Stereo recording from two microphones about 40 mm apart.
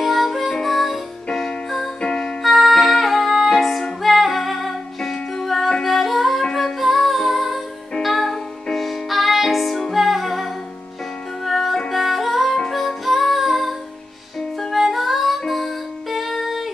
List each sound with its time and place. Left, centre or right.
0.0 s music: centre
2.4 s music: centre
5.1 s music: centre
5.9 s music: centre